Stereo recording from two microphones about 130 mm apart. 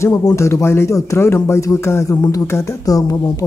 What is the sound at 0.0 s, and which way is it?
Speech, 25° left (ahead or behind).